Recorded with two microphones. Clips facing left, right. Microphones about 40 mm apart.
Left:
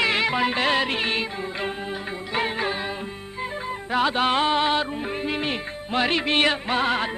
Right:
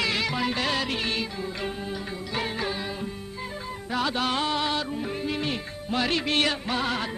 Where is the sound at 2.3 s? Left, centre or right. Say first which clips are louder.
Left 5 dB; left.